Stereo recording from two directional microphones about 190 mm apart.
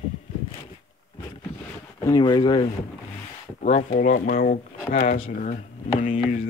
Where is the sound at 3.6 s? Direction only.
45° left (ahead or behind).